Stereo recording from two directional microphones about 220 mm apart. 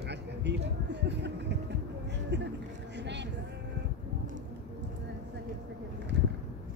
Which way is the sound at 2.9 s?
50° right (ahead or behind).